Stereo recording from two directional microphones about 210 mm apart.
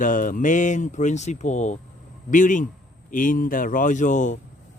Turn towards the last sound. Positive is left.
turn(degrees=35)  # may be behind; listen again after turning